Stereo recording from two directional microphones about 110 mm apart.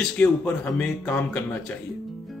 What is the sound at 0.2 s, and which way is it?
Speech, 15° left (ahead or behind).